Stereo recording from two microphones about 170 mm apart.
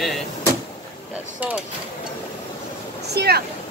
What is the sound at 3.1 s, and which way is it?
Speech, 70° right (ahead or behind).